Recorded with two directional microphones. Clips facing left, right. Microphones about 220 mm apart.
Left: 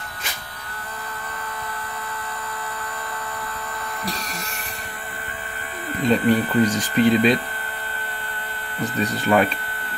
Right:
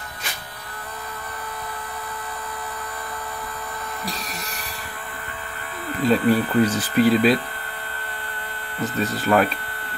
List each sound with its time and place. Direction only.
6.0 s speech: 5° right (ahead or behind)
8.8 s speech: centre (ahead or behind)